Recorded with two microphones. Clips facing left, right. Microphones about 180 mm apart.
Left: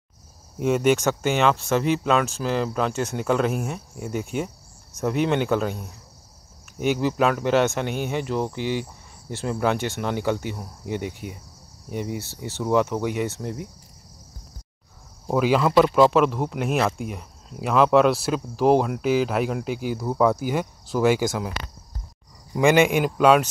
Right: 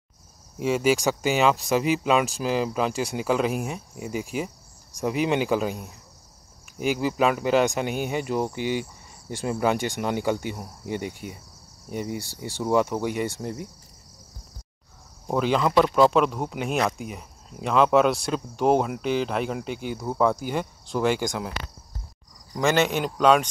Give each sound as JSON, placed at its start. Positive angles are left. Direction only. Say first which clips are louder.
{"t": 0.6, "sound": "speech", "louder": "left 2 dB", "side_deg": 0}
{"t": 15.2, "sound": "speech", "louder": "left 3 dB", "side_deg": 5}